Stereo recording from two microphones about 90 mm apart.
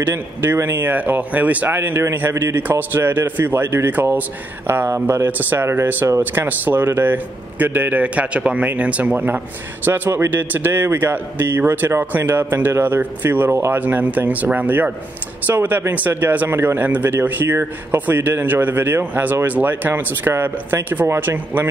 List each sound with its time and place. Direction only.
0.1 s speech: 25° right (ahead or behind)